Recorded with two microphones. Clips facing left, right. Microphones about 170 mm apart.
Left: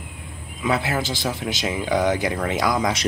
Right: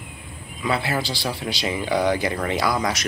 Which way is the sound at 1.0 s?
20° left (ahead or behind).